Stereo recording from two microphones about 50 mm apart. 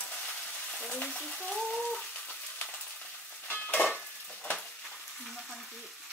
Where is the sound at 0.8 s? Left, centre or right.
Left.